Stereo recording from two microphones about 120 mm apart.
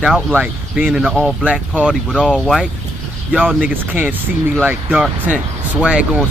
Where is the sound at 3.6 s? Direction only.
15° right (ahead or behind).